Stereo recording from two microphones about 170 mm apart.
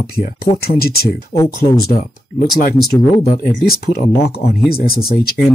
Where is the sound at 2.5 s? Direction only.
55° left (ahead or behind).